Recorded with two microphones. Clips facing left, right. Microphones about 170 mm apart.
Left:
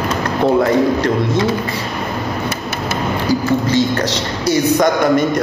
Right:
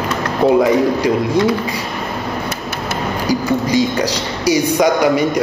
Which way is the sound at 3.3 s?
15° right (ahead or behind).